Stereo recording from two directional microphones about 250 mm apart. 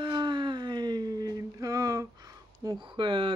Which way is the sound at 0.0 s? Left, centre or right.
Centre.